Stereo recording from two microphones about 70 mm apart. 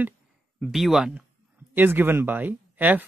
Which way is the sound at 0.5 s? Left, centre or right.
Centre.